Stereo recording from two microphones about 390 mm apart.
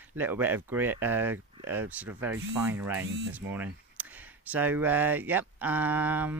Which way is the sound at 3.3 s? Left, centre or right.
Centre.